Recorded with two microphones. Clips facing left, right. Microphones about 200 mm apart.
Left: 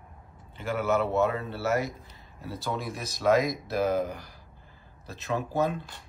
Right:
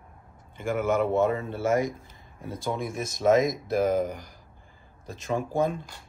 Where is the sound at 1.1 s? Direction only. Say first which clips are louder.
Right 2 dB; 50° right (ahead or behind).